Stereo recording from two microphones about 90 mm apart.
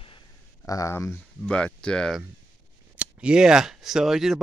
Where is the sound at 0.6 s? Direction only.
40° left (ahead or behind).